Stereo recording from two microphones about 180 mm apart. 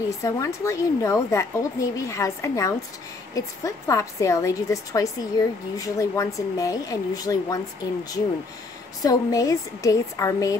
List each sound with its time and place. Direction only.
0.2 s a woman's voice: 15° left (ahead or behind)